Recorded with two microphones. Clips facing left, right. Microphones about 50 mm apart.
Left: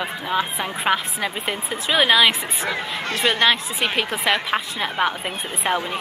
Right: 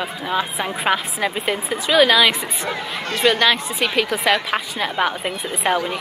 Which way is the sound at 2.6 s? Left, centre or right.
Left.